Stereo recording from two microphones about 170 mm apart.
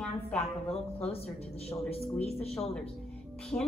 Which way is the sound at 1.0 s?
35° left (ahead or behind).